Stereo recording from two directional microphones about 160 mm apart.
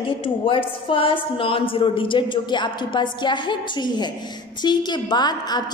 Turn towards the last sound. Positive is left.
turn(degrees=25)  # may be behind; listen again after turning